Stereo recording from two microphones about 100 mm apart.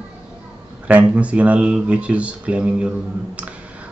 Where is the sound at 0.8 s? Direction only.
15° right (ahead or behind).